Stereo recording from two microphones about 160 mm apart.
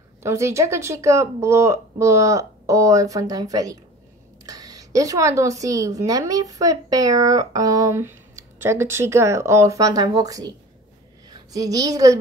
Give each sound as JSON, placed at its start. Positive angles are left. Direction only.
{"t": 0.2, "sound": "a woman's voice", "side_deg": -20}